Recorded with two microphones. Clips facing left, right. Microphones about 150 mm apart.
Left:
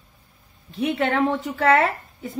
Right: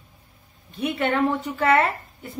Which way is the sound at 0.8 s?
90° left.